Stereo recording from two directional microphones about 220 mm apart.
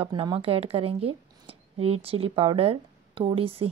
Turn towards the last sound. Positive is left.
turn(degrees=-25)  # may be behind; listen again after turning